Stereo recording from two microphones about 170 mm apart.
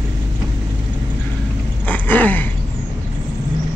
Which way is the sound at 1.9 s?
10° left (ahead or behind).